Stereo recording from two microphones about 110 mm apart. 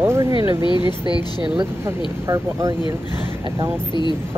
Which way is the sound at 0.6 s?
45° left (ahead or behind).